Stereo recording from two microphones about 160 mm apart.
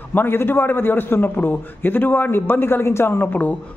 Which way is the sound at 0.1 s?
15° left (ahead or behind).